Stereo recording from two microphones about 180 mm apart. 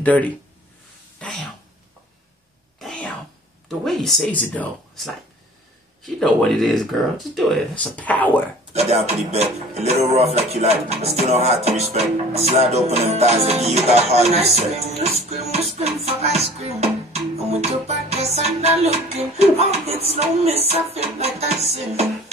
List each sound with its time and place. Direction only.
0.0 s speech: 10° left (ahead or behind)
2.8 s throat clearing: centre (ahead or behind)
3.8 s speech: centre (ahead or behind)
8.7 s speech: 35° right (ahead or behind)